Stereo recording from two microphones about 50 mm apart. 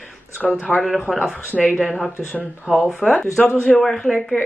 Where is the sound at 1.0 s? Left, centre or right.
Centre.